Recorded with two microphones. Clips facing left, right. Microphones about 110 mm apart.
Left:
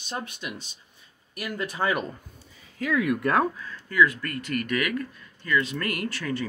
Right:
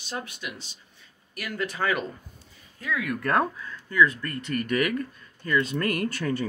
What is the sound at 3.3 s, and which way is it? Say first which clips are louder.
Speech: left 1 dB; 5° left (ahead or behind).